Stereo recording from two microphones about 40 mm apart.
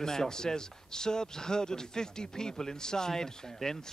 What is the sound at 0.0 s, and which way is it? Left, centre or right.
Speech, centre.